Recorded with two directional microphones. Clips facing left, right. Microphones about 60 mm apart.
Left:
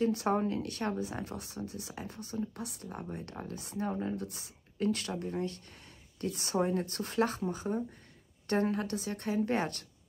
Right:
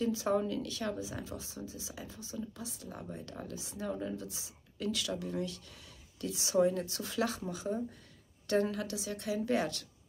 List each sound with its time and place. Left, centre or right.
0.0 s a woman's voice: left
2.9 s speech: left
3.5 s speech: left
4.2 s speech: left